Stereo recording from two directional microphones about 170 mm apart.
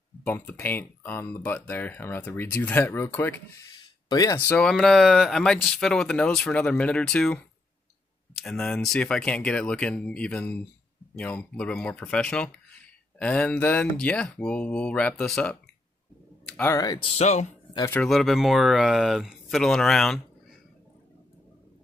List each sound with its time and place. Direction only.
0.3 s speech: 10° left (ahead or behind)
4.1 s speech: 20° left (ahead or behind)
4.5 s speech: 5° left (ahead or behind)
8.4 s speech: centre (ahead or behind)
16.7 s speech: 25° left (ahead or behind); by 17.6 s 40° left (ahead or behind)
17.9 s speech: centre (ahead or behind)